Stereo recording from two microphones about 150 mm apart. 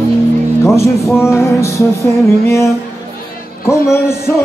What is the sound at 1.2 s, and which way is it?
Music, 20° left (ahead or behind).